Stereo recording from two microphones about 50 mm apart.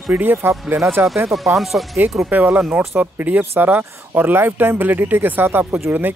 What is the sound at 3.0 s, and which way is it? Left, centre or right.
Speech, right.